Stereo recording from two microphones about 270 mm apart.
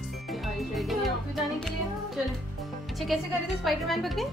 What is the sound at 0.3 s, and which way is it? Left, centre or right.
Music, centre.